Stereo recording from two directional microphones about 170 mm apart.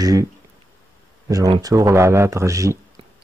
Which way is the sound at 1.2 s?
20° right (ahead or behind).